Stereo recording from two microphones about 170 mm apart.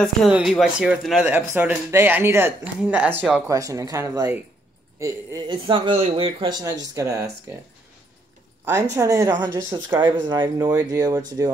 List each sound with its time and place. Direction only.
0.0 s speech: centre (ahead or behind); by 4.4 s 20° right (ahead or behind)
5.5 s speech: 30° right (ahead or behind)
6.6 s speech: 15° right (ahead or behind)
8.9 s speech: 20° right (ahead or behind)